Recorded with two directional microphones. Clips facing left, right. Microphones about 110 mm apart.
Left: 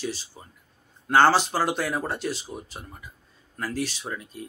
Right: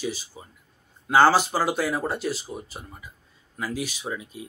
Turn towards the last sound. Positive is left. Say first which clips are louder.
# right 2 dB
turn(degrees=-5)  # may be behind; listen again after turning